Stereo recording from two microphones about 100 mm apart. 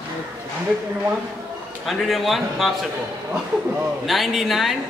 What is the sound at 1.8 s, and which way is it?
Speech, centre (ahead or behind).